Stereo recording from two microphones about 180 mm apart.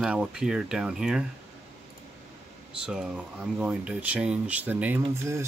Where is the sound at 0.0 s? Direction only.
5° right (ahead or behind).